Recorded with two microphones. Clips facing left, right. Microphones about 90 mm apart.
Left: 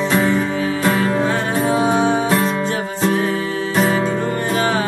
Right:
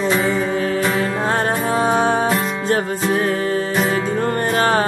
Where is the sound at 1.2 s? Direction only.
45° right (ahead or behind).